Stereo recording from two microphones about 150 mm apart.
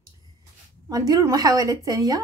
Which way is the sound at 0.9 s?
25° right (ahead or behind).